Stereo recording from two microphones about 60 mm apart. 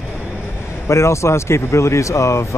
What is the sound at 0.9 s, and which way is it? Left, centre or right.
Speech, left.